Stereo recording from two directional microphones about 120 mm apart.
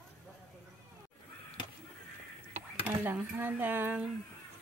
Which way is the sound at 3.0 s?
15° right (ahead or behind).